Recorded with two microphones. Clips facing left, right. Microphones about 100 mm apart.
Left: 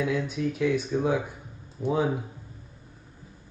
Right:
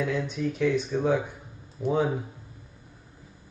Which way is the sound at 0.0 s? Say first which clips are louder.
Left 1 dB; 5° left (ahead or behind).